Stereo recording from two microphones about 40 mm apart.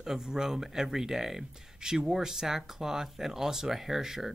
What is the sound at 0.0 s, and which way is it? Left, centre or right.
Speech, centre.